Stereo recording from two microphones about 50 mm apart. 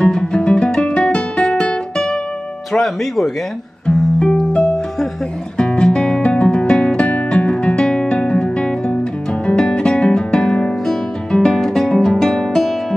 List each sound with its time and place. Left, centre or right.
0.0 s guitar: centre
2.7 s speech: centre
4.2 s music: centre